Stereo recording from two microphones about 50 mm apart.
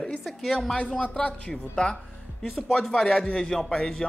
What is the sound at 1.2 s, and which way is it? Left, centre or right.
A man's voice, left.